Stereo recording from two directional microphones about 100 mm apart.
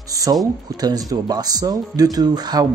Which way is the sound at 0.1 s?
35° right (ahead or behind).